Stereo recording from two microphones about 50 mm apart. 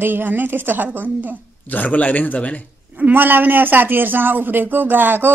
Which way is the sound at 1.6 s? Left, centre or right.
Left.